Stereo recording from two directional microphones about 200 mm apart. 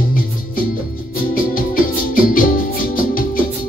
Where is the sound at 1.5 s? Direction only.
45° left (ahead or behind).